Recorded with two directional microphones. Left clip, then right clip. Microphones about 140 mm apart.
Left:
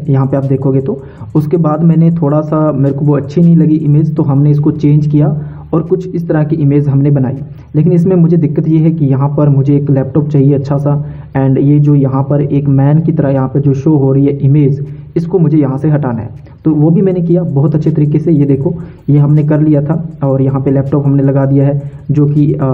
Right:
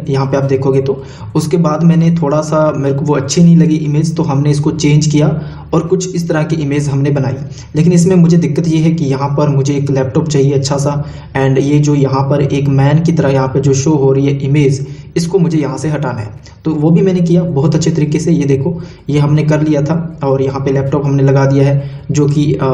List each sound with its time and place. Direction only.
0.1 s a man's voice: 40° left (ahead or behind)